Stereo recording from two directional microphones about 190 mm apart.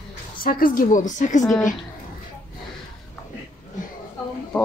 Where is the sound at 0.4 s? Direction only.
50° left (ahead or behind).